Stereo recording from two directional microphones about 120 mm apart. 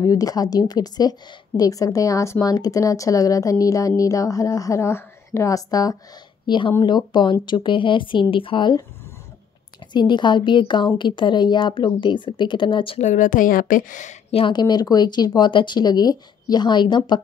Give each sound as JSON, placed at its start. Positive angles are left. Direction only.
{"t": 0.0, "sound": "a woman's voice", "side_deg": 30}
{"t": 6.4, "sound": "a woman's voice", "side_deg": 40}
{"t": 9.9, "sound": "speech", "side_deg": 40}
{"t": 13.0, "sound": "a woman's voice", "side_deg": 90}
{"t": 14.3, "sound": "speech", "side_deg": 40}